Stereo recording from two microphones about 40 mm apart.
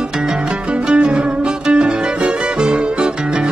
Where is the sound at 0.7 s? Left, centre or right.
Right.